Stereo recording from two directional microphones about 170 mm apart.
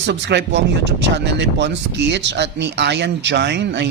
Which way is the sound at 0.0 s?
90° right.